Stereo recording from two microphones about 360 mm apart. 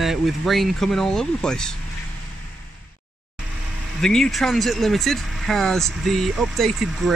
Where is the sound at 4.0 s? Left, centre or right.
Centre.